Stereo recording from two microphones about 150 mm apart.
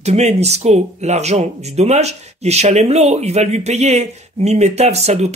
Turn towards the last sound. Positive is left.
turn(degrees=-45)  # may be behind; listen again after turning